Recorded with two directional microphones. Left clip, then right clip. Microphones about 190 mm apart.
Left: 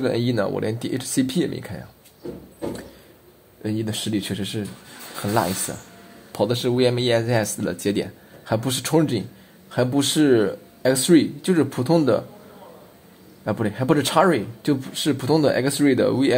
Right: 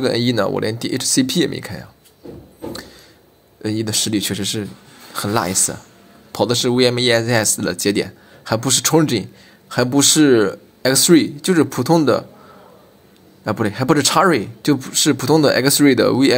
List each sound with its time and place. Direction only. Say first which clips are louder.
0.0 s speech: right 5 dB; 15° right (ahead or behind)
3.6 s speech: right 6 dB; 15° right (ahead or behind)
13.4 s speech: right 4 dB; 15° right (ahead or behind)